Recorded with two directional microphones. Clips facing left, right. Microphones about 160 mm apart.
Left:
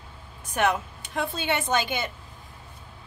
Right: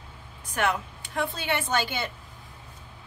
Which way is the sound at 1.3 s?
20° left (ahead or behind).